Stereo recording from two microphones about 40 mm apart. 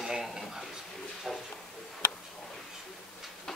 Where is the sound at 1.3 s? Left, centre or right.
Centre.